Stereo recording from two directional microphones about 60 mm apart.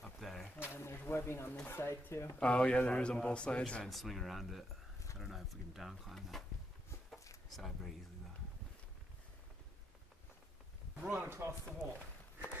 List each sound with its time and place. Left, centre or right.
0.0 s a sound: centre
0.7 s speech: left
2.4 s a man's voice: centre
3.8 s speech: centre
7.4 s speech: centre
11.1 s speech: right